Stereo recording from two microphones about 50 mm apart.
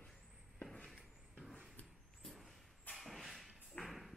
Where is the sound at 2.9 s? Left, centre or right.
Centre.